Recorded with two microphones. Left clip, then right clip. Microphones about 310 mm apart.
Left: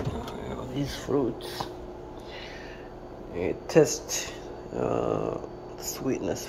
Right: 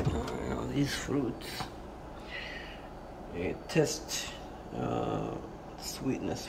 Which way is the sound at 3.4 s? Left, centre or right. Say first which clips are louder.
Left 8 dB; centre.